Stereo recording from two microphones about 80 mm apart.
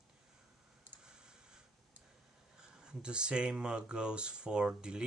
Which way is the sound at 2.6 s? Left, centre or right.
Centre.